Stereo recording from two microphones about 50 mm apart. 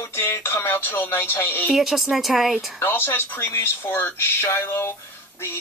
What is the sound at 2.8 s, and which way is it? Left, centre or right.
Speech, left.